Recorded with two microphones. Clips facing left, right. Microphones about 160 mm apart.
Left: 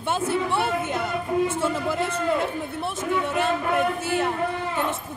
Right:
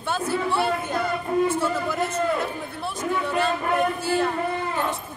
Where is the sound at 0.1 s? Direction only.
25° left (ahead or behind).